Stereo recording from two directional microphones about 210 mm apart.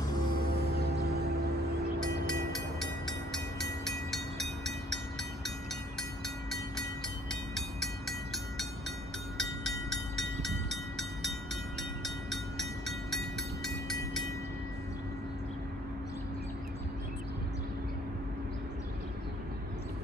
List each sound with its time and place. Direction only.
0.5 s music: 50° right (ahead or behind)
4.6 s train: centre (ahead or behind)
7.5 s train: centre (ahead or behind)